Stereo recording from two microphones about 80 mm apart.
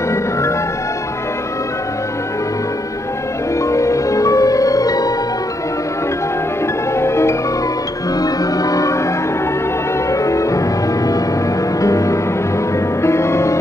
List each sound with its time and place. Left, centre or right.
3.6 s music: left
7.0 s marimba: left
8.2 s music: left
10.1 s music: left
11.8 s music: left